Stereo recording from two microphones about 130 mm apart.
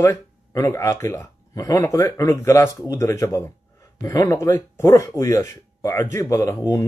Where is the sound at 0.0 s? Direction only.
25° left (ahead or behind).